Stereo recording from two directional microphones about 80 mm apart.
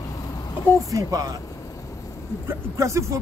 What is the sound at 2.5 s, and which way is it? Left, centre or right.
Speech, right.